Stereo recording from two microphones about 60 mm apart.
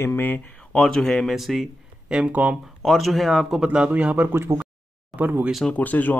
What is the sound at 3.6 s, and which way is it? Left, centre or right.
Speech, right.